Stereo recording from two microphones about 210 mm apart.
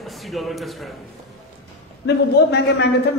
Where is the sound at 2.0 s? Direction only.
55° left (ahead or behind).